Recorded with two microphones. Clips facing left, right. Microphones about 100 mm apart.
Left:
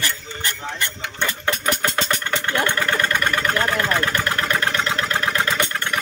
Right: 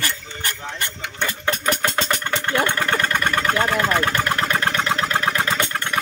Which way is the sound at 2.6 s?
15° right (ahead or behind).